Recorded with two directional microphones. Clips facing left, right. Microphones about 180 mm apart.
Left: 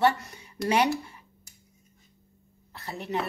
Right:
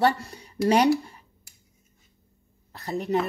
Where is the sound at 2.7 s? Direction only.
40° right (ahead or behind).